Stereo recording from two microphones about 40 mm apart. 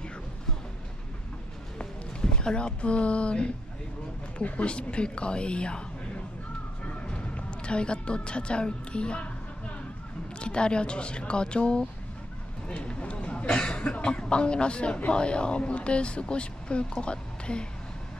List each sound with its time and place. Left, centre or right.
2.3 s speech: left
6.9 s speech: left
10.4 s speech: left